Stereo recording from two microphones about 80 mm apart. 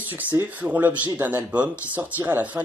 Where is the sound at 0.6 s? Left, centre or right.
Centre.